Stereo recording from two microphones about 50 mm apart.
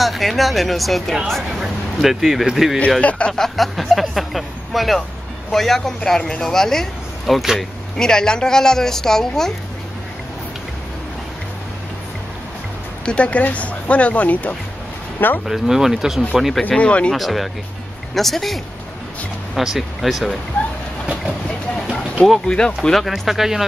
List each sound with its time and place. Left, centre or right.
0.0 s speech: centre
1.6 s speech: centre
3.0 s speech: left
3.3 s a woman's voice: centre
8.0 s a woman's voice: centre
13.0 s speech: left
15.1 s speech: left
15.4 s speech: centre
16.7 s speech: left
17.1 s speech: centre
22.8 s speech: centre